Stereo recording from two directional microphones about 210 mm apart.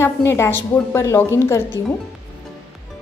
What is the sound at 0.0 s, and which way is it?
A woman's voice, 10° left (ahead or behind).